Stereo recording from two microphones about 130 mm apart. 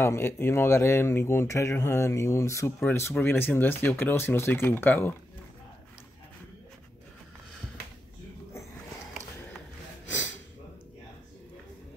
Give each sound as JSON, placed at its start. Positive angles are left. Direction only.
{"t": 0.0, "sound": "speech", "side_deg": 20}